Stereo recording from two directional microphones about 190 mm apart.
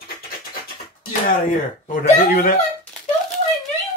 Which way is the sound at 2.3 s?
50° left (ahead or behind).